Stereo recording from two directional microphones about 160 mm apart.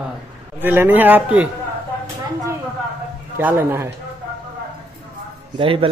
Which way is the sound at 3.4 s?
15° right (ahead or behind).